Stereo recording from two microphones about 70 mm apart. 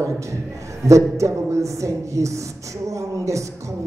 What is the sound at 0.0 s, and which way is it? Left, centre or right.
A man's voice, right.